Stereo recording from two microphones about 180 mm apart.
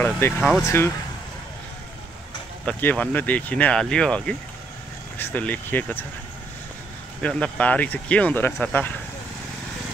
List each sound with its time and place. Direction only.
0.0 s speech: 5° left (ahead or behind)
0.7 s speech: 15° left (ahead or behind)
2.6 s speech: 10° left (ahead or behind)
7.2 s speech: 5° left (ahead or behind)